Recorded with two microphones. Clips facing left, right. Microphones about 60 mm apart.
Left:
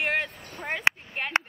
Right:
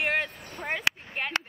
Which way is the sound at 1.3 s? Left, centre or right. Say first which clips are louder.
Left 7 dB; left.